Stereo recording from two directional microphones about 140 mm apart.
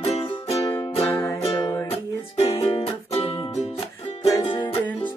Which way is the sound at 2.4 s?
30° left (ahead or behind).